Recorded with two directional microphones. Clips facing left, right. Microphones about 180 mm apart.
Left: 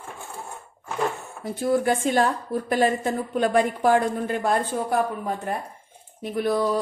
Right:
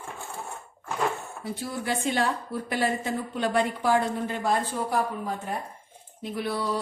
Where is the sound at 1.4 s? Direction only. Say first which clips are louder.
Left 11 dB; 50° left (ahead or behind).